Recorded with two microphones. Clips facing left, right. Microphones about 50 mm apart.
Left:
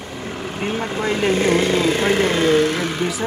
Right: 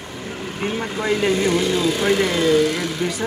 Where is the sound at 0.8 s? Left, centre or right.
Left.